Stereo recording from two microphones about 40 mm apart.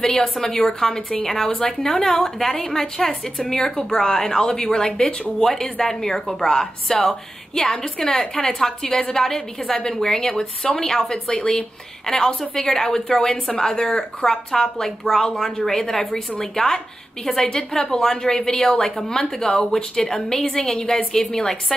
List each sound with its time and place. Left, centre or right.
0.0 s a woman's voice: centre